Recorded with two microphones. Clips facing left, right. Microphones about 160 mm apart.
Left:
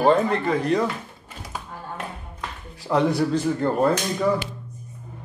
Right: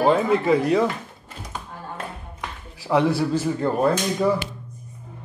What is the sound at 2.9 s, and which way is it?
Speech, 5° right (ahead or behind).